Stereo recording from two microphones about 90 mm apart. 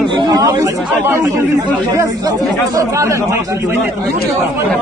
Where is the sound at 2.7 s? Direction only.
35° right (ahead or behind).